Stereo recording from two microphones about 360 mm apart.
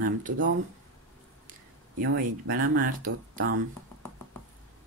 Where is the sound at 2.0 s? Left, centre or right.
Right.